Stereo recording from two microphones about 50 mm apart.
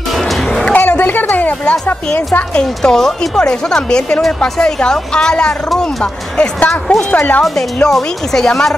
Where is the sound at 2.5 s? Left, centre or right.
Centre.